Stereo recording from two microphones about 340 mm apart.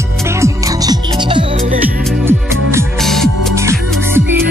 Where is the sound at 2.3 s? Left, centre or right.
Centre.